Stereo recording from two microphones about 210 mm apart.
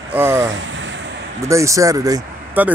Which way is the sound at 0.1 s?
10° right (ahead or behind).